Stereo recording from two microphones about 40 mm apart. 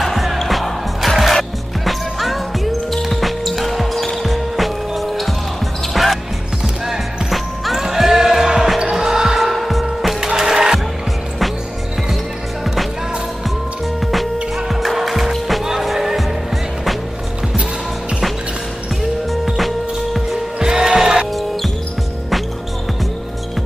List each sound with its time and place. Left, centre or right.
0.0 s music: centre
8.7 s basketball bounce: centre
9.5 s music: centre
10.2 s music: centre
14.7 s music: centre
19.4 s music: centre
20.5 s music: centre